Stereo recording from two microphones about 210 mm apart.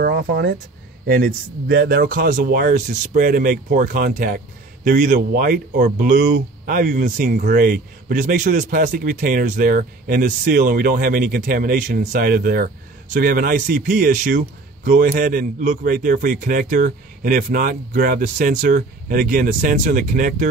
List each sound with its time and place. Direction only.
0.0 s a man's voice: 50° right (ahead or behind)